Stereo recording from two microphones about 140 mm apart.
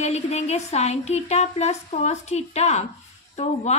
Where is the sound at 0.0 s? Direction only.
50° left (ahead or behind).